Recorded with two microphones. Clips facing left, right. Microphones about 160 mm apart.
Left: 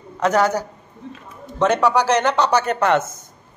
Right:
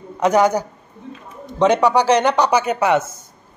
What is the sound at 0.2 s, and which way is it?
Speech, 15° right (ahead or behind).